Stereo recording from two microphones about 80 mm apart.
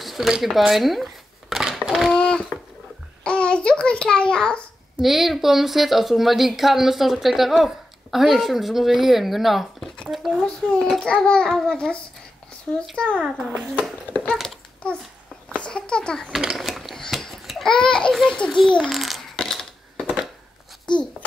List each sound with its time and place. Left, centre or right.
0.0 s a sound: centre
2.1 s a sound: centre
3.3 s child singing: centre
5.0 s a woman's voice: centre
13.6 s speech: centre
14.1 s a sound: centre
14.8 s a child's voice: centre
15.5 s a sound: centre
16.3 s babbling: centre
17.7 s a child's voice: centre
18.9 s coin: centre
20.9 s babbling: centre